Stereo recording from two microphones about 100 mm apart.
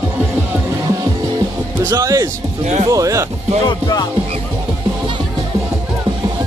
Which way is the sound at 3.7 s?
45° left (ahead or behind).